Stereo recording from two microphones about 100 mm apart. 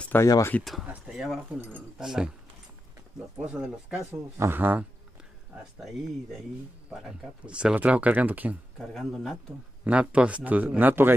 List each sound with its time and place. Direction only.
0.2 s speech: 30° left (ahead or behind)
1.0 s speech: 5° right (ahead or behind)
3.4 s speech: 10° right (ahead or behind)
4.4 s speech: 20° right (ahead or behind)
6.9 s speech: 10° right (ahead or behind)
8.7 s speech: centre (ahead or behind)
9.8 s speech: 10° right (ahead or behind)